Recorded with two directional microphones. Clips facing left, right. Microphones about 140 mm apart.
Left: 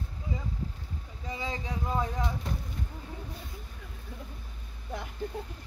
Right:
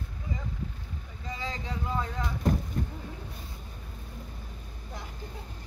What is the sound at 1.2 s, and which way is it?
Vehicle, 15° left (ahead or behind).